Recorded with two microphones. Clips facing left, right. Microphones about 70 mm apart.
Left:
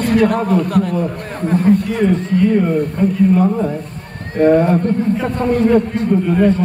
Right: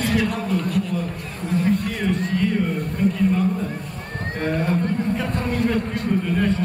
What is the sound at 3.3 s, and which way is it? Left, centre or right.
A man's voice, left.